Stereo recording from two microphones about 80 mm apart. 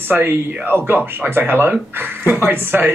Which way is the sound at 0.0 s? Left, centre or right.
Right.